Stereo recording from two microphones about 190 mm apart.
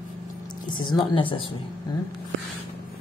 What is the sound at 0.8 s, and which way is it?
Speech, 25° left (ahead or behind).